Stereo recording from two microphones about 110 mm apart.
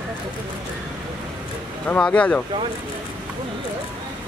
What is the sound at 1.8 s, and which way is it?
Speech, 10° left (ahead or behind).